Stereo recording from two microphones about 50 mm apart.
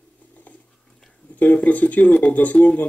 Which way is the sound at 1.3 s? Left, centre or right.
Left.